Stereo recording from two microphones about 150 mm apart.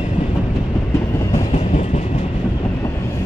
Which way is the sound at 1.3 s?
50° left (ahead or behind).